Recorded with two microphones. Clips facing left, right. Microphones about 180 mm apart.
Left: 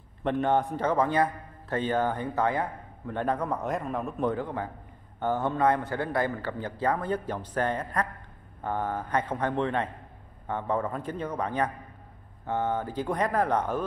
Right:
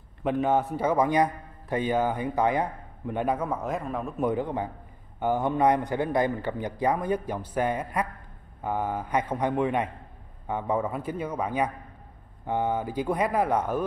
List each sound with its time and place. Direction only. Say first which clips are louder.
0.2 s a man's voice: right 1 dB; 5° right (ahead or behind)
4.3 s a man's voice: right 3 dB; 15° right (ahead or behind)